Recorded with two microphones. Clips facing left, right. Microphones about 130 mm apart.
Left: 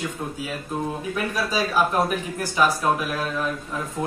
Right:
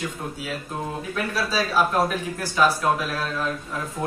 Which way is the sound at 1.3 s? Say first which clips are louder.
Right 1 dB; 15° left (ahead or behind).